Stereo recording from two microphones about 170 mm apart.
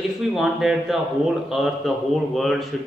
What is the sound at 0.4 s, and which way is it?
A man's voice, centre (ahead or behind).